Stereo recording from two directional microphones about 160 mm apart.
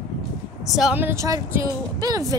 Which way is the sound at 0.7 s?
5° right (ahead or behind).